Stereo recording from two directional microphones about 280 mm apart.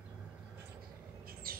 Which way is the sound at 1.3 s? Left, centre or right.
Right.